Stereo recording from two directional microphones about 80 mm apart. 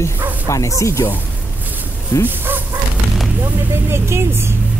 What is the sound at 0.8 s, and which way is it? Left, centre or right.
Speech, left.